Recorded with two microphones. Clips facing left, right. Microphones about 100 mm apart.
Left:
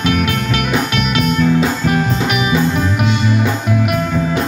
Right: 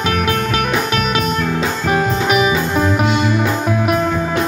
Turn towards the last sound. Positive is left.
turn(degrees=-35)  # may be behind; listen again after turning